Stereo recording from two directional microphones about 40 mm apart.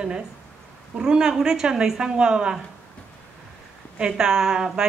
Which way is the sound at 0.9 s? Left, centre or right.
Centre.